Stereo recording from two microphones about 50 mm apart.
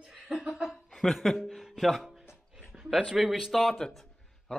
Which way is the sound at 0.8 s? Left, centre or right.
Centre.